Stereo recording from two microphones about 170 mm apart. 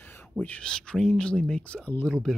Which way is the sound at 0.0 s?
10° left (ahead or behind).